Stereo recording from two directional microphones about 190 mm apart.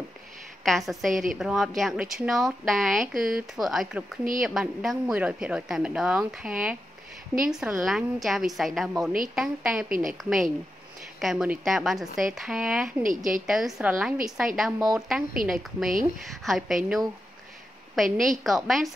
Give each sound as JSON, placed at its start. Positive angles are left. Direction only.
{"t": 0.7, "sound": "speech", "side_deg": 0}
{"t": 9.8, "sound": "a woman's voice", "side_deg": -45}
{"t": 11.1, "sound": "speech", "side_deg": 0}
{"t": 13.0, "sound": "a woman's voice", "side_deg": -45}
{"t": 13.5, "sound": "speech", "side_deg": 0}
{"t": 18.4, "sound": "speech", "side_deg": 0}